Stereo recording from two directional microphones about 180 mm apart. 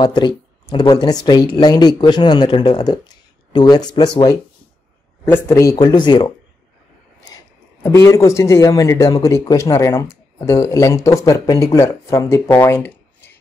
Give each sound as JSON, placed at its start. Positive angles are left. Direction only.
{"t": 0.0, "sound": "speech", "side_deg": 25}